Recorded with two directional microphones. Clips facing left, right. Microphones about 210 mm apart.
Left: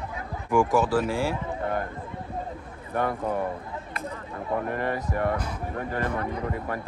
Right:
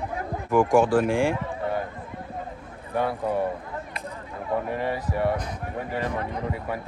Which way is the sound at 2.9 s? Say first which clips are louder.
Right 1 dB; 10° right (ahead or behind).